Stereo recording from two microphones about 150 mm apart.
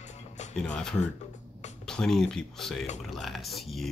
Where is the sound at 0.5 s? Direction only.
5° left (ahead or behind).